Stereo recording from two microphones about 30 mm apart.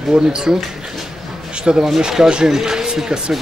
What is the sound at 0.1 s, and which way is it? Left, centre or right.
Speech, right.